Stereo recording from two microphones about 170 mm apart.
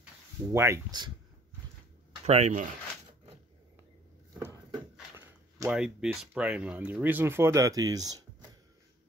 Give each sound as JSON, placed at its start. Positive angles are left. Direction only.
{"t": 0.5, "sound": "speech", "side_deg": -15}
{"t": 2.2, "sound": "speech", "side_deg": -40}
{"t": 4.3, "sound": "a sound", "side_deg": -20}
{"t": 5.7, "sound": "speech", "side_deg": -5}